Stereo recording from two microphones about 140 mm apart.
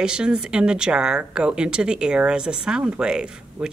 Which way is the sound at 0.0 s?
5° right (ahead or behind).